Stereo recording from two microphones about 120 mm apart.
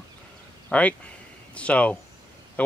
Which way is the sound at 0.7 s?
10° left (ahead or behind).